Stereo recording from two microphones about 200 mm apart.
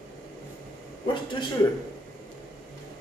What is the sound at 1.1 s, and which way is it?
Speech, 25° left (ahead or behind).